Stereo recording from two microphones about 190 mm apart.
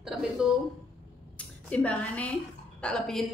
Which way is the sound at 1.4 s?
5° left (ahead or behind).